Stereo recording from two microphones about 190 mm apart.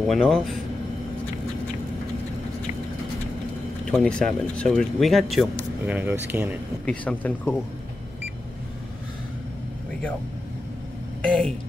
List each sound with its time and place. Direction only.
0.1 s speech: centre (ahead or behind)
3.8 s speech: 5° left (ahead or behind)
6.3 s speech: 15° right (ahead or behind)
6.9 s speech: 5° left (ahead or behind)
11.2 s speech: 5° left (ahead or behind)